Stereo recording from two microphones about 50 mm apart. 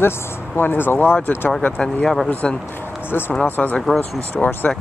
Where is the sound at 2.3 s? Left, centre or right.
Left.